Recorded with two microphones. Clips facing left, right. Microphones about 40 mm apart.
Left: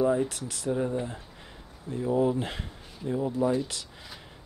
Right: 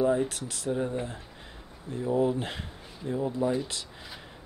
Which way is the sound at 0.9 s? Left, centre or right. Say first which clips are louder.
Left 1 dB; right.